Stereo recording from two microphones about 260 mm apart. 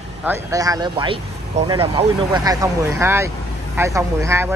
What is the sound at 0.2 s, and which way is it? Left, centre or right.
Speech, centre.